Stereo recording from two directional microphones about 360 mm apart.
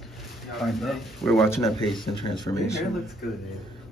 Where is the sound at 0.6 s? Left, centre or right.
Centre.